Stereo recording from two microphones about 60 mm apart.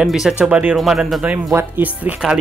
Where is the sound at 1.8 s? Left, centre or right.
Right.